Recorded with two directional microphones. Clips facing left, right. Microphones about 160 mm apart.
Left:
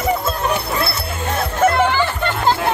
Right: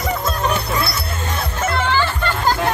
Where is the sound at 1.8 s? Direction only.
15° left (ahead or behind).